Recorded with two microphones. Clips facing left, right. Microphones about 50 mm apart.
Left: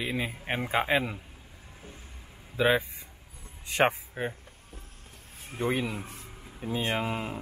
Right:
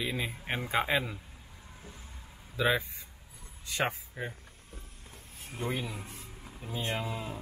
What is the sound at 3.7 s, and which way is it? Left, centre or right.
Speech, left.